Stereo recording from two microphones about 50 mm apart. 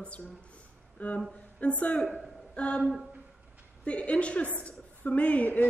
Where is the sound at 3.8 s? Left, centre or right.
Left.